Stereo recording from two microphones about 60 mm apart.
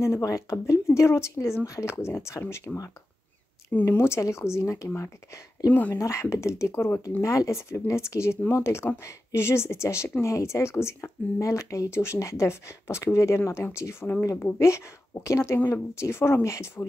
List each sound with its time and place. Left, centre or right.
0.0 s speech: left
3.8 s speech: left
5.7 s speech: left
5.9 s speech: left
7.2 s speech: left